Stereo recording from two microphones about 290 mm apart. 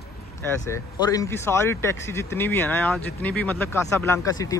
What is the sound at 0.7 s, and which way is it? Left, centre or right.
A man's voice, centre.